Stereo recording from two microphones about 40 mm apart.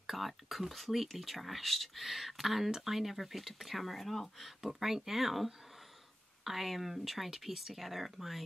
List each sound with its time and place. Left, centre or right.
0.0 s speech: centre